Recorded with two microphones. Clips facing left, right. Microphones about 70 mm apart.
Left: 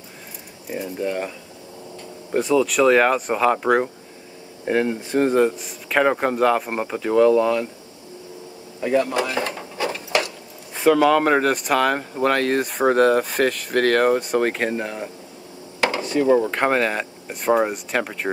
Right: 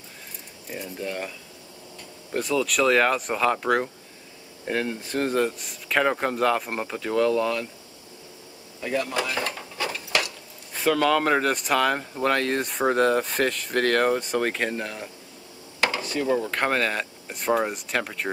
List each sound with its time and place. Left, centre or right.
0.7 s speech: centre
2.3 s speech: centre
8.8 s drawer open or close: left
10.7 s speech: centre
15.8 s a sound: left
16.5 s speech: centre